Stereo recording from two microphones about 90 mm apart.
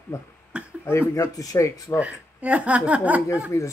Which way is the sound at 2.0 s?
15° right (ahead or behind).